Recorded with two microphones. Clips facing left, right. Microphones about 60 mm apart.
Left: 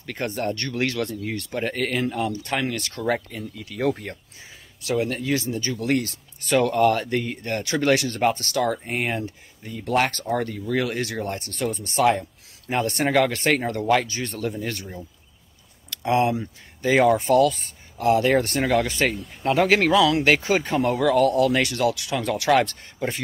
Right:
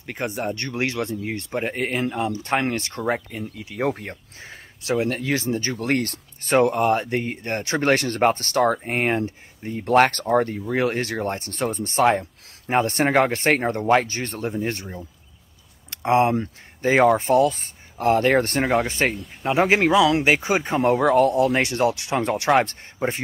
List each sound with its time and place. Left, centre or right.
0.0 s speech: centre; by 6.6 s right
6.6 s speech: right
15.9 s a sound: right
16.8 s speech: right
19.6 s speech: centre